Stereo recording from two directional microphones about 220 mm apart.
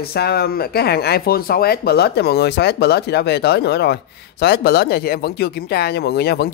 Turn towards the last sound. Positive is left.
turn(degrees=45)  # may be behind; listen again after turning